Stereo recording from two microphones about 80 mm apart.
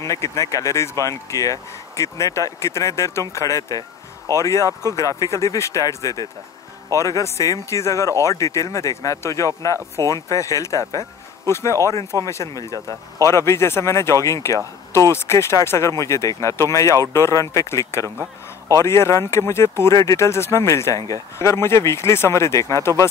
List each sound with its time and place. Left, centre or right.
0.0 s speech: left